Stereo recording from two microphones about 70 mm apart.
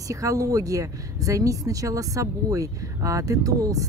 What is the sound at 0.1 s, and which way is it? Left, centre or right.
A woman's voice, right.